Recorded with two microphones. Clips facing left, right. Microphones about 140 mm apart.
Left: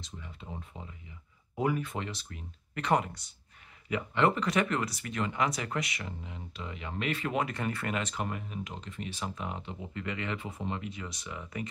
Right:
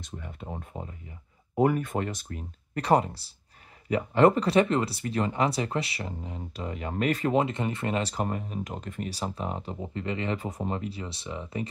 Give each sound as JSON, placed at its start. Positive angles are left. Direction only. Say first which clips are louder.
{"t": 0.0, "sound": "speech", "louder": "right 6 dB", "side_deg": -55}
{"t": 7.3, "sound": "speech", "louder": "right 6 dB", "side_deg": -25}